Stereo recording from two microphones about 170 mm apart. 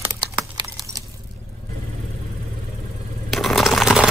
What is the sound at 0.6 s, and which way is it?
Keys jangling, 25° right (ahead or behind).